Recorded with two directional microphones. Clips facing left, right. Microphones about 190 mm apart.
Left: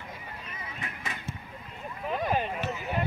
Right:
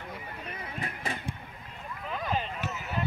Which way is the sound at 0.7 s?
30° right (ahead or behind).